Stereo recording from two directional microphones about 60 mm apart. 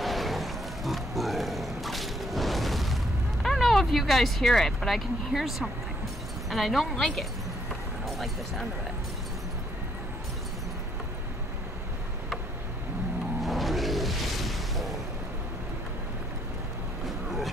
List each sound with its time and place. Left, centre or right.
0.0 s a sound: centre
3.4 s speech: centre
13.4 s music: centre